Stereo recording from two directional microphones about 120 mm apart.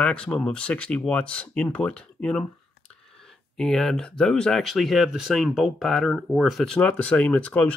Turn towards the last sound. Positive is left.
turn(degrees=10)  # may be behind; listen again after turning